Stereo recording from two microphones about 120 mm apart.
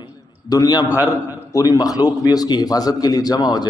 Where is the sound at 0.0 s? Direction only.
30° left (ahead or behind).